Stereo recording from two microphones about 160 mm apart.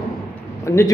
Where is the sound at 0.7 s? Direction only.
15° left (ahead or behind).